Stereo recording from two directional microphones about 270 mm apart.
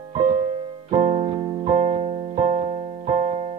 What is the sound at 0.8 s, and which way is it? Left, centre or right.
Music, right.